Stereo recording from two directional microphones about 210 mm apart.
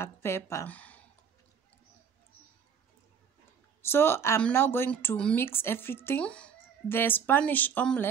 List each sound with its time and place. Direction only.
0.0 s a woman's voice: 10° left (ahead or behind)
3.8 s a woman's voice: 10° left (ahead or behind)